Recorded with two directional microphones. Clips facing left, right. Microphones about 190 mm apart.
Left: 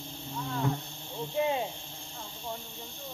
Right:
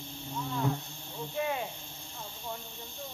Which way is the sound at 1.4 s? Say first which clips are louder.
Left 4 dB; 25° left (ahead or behind).